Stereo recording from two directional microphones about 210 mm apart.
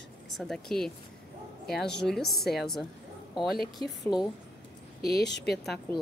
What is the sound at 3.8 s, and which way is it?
Speech, 25° right (ahead or behind).